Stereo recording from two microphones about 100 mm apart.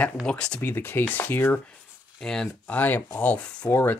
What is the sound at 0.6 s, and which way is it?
Speech, 20° left (ahead or behind).